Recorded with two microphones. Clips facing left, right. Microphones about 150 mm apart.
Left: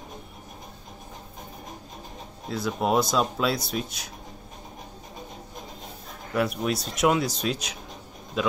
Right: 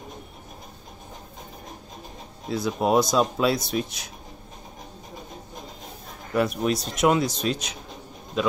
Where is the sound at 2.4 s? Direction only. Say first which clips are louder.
Right 3 dB; 15° right (ahead or behind).